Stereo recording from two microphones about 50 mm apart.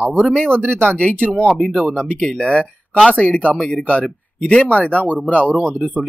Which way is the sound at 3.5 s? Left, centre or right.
Centre.